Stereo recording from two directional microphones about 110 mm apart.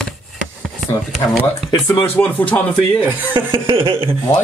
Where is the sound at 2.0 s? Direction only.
15° left (ahead or behind).